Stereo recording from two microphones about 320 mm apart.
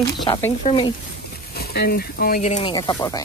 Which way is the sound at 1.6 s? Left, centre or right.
Left.